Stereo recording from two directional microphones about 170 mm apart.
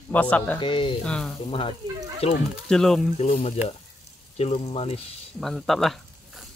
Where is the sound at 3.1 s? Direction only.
40° left (ahead or behind).